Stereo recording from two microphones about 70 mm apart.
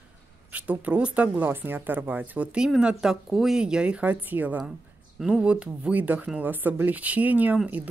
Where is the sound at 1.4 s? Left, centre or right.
Right.